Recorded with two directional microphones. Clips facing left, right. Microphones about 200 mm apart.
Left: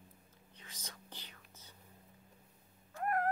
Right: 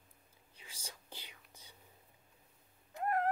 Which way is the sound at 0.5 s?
10° right (ahead or behind).